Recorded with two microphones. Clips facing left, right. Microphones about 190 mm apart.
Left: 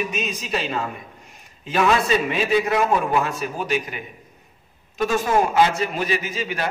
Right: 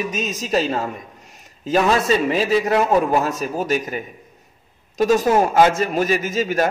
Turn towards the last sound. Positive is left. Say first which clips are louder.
# right 7 dB
turn(degrees=-45)  # may be behind; listen again after turning